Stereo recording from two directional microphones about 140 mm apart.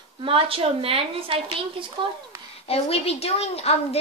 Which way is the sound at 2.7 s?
45° left (ahead or behind).